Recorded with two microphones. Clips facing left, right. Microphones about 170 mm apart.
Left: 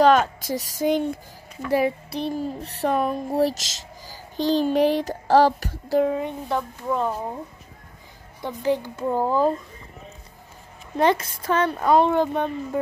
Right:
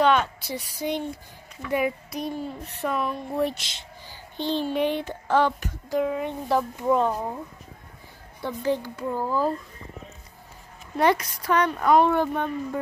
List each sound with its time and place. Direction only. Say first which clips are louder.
0.0 s a sound: left 4 dB; 40° left (ahead or behind)
0.5 s speech: left 6 dB; 45° left (ahead or behind)
7.0 s speech: right 1 dB; 5° left (ahead or behind)
8.4 s speech: left 2 dB; 15° left (ahead or behind)
11.0 s speech: left 1 dB; 25° left (ahead or behind)